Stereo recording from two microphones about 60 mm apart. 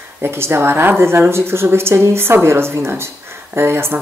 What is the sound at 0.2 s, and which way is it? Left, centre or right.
A woman's voice, right.